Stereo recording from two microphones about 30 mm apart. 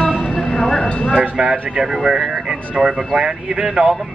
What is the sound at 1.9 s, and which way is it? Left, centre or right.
Speech, centre.